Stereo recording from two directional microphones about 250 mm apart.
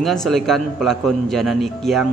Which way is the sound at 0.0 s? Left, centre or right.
Centre.